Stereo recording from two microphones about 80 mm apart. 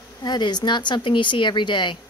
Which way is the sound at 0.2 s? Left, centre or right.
Left.